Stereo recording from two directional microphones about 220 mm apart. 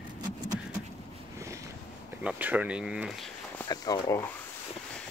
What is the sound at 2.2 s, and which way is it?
Speech, 5° right (ahead or behind).